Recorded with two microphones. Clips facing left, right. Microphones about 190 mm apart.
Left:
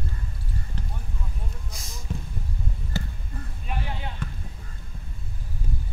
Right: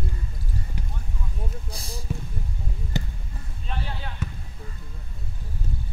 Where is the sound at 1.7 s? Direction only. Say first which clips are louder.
Right 5 dB; 35° right (ahead or behind).